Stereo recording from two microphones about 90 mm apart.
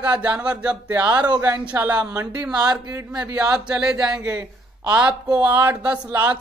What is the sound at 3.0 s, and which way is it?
Speech, 35° right (ahead or behind).